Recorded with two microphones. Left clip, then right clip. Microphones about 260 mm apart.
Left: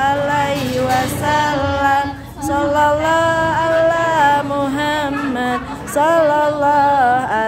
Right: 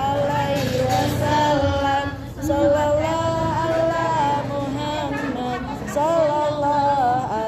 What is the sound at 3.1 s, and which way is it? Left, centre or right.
Music, left.